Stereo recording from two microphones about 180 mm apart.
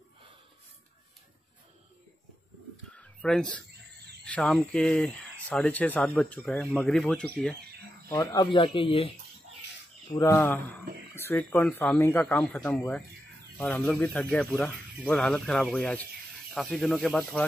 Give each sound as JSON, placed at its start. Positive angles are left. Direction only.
{"t": 3.0, "sound": "a sound", "side_deg": 5}
{"t": 4.2, "sound": "speech", "side_deg": 5}
{"t": 8.1, "sound": "speech", "side_deg": 20}
{"t": 10.0, "sound": "speech", "side_deg": 20}
{"t": 10.3, "sound": "speech", "side_deg": 10}